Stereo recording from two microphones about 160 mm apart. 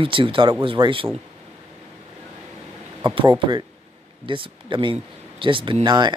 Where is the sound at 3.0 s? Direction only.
30° right (ahead or behind).